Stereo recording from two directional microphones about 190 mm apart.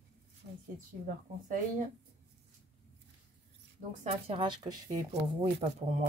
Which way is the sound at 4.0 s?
30° right (ahead or behind).